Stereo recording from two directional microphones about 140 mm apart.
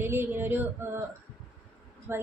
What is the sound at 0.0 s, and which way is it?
A woman's voice, 15° right (ahead or behind).